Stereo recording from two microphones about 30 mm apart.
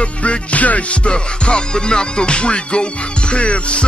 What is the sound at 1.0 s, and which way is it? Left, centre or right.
Music, left.